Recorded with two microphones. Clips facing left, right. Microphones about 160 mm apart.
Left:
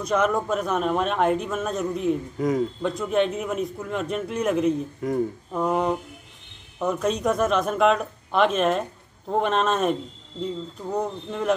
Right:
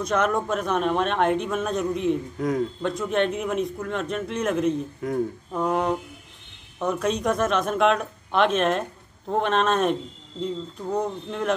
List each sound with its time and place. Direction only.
0.0 s a man's voice: 5° left (ahead or behind)